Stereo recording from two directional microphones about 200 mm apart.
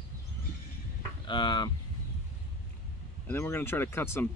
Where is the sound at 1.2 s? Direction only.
25° left (ahead or behind).